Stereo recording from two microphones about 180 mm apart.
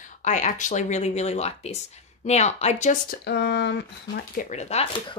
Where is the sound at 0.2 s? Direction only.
45° left (ahead or behind).